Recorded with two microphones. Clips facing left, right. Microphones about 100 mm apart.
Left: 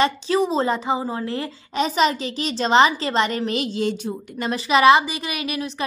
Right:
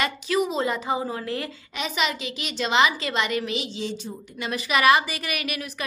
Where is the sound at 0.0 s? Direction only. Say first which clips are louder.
Left 5 dB; 30° left (ahead or behind).